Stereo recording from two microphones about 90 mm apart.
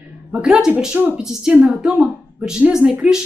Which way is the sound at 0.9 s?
20° right (ahead or behind).